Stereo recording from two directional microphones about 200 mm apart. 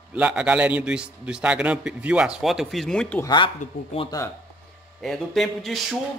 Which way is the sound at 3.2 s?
20° left (ahead or behind).